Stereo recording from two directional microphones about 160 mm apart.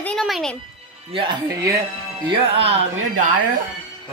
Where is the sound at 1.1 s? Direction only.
25° right (ahead or behind).